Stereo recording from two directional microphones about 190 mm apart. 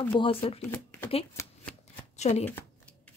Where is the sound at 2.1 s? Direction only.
35° left (ahead or behind).